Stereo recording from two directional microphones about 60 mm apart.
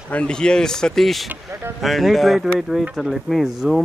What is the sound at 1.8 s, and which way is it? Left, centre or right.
Speech, centre.